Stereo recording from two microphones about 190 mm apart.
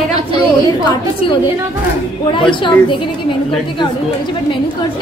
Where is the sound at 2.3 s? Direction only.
25° left (ahead or behind).